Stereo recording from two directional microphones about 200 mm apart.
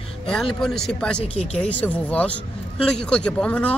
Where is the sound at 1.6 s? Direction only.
5° left (ahead or behind).